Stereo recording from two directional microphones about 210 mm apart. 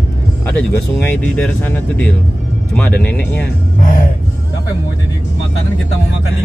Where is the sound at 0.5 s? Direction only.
5° left (ahead or behind).